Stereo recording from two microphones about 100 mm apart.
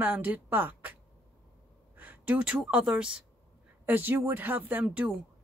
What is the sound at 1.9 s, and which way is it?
Speech, 15° right (ahead or behind).